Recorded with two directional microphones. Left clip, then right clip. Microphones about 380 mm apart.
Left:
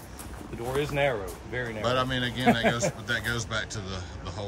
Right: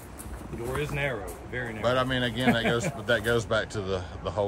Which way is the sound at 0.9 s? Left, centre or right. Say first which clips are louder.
Left 4 dB; left.